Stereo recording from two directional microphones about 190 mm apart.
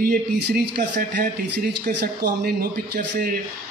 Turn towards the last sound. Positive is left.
turn(degrees=-55)  # may be behind; listen again after turning